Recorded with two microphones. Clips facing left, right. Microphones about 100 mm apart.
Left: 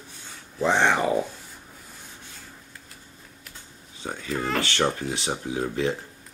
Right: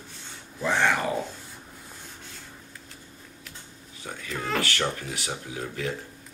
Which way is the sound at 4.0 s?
25° left (ahead or behind).